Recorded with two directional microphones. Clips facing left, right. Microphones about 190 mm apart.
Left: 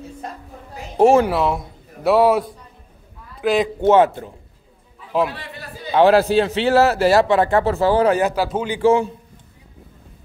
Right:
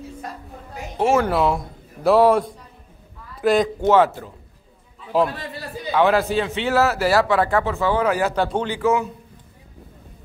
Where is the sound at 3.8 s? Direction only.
20° left (ahead or behind).